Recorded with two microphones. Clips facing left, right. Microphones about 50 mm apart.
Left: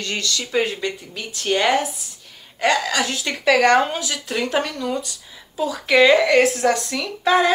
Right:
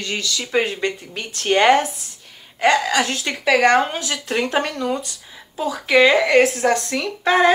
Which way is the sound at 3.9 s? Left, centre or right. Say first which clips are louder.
Right 2 dB; right.